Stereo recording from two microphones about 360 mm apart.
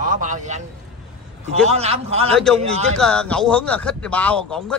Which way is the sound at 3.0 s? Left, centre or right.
Centre.